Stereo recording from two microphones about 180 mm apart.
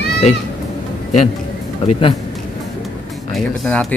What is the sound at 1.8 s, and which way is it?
Speech, 35° left (ahead or behind).